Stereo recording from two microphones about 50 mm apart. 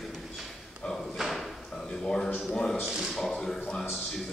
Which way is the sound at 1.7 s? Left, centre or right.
Centre.